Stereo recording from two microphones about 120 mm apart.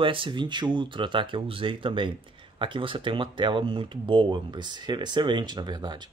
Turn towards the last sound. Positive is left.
turn(degrees=-35)  # may be behind; listen again after turning